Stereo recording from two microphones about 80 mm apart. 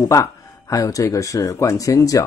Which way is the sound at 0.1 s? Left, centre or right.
Left.